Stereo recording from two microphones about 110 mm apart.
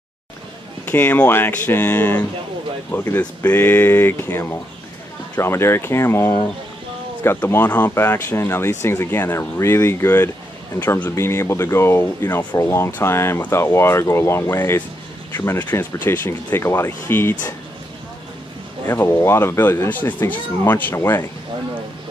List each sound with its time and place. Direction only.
0.8 s speech: 20° left (ahead or behind)
18.9 s speech: 25° left (ahead or behind)